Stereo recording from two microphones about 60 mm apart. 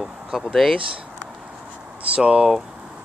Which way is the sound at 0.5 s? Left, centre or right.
Centre.